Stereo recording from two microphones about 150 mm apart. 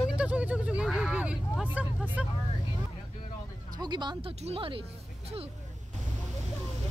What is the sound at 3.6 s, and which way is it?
Music, 25° right (ahead or behind).